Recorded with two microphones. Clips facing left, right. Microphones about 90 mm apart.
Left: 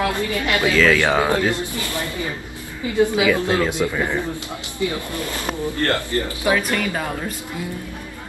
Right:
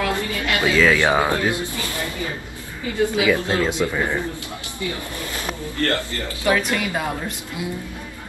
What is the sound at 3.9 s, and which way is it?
Speech, 15° right (ahead or behind).